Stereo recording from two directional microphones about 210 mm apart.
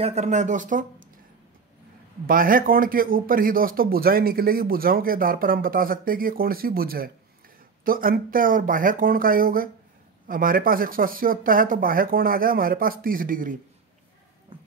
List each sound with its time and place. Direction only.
0.0 s speech: 30° right (ahead or behind)
2.2 s a man's voice: 40° right (ahead or behind)